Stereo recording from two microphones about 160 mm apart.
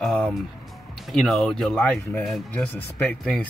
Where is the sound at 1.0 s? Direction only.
Centre (ahead or behind).